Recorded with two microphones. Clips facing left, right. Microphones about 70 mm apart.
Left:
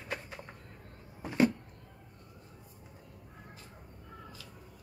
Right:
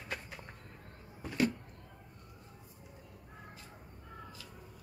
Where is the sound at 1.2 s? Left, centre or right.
Centre.